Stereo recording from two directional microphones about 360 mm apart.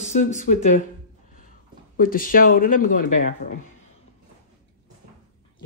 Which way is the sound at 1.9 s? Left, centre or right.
Left.